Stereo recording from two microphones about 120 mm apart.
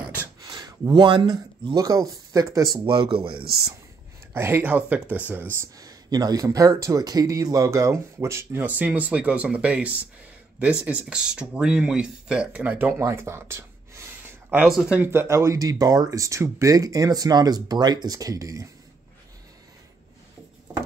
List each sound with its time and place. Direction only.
0.4 s a sound: 35° right (ahead or behind)
1.7 s speech: 30° right (ahead or behind)
2.8 s a man's voice: 45° right (ahead or behind)
4.3 s speech: 20° right (ahead or behind)
14.6 s speech: 5° right (ahead or behind)
15.0 s speech: 20° right (ahead or behind)